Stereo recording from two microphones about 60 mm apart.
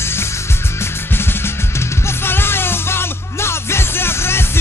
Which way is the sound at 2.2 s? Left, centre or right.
Left.